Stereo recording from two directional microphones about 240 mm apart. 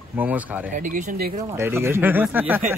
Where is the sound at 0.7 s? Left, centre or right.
Right.